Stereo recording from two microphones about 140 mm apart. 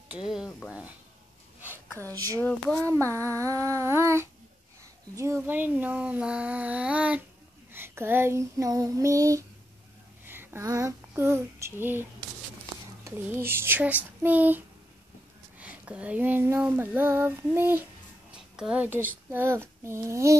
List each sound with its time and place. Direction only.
0.7 s female singing: 10° right (ahead or behind)
2.4 s speech: 10° left (ahead or behind)
2.9 s a sound: 20° right (ahead or behind)
5.1 s female singing: 20° right (ahead or behind)
7.7 s a sound: 15° right (ahead or behind)
10.2 s child singing: 15° right (ahead or behind)
13.0 s female singing: 15° right (ahead or behind)
15.6 s female singing: 10° right (ahead or behind)
18.3 s speech: 5° right (ahead or behind)